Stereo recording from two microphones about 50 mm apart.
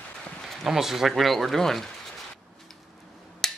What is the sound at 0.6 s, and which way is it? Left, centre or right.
Speech, centre.